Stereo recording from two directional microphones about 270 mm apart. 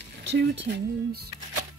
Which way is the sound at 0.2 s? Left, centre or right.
Right.